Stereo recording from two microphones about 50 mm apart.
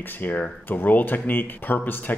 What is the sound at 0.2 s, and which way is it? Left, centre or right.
Speech, left.